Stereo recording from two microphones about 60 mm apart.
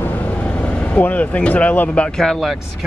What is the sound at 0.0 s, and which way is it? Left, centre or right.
Vehicle, left.